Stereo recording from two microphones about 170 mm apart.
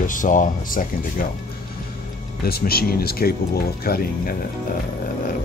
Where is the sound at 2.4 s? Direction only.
65° left (ahead or behind).